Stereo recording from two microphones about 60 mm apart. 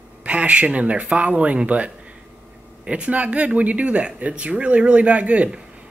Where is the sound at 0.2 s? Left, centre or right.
Right.